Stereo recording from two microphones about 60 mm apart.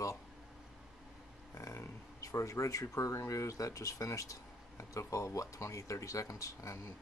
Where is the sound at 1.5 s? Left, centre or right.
Left.